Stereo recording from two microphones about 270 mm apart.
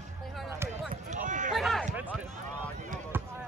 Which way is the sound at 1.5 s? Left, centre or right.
Centre.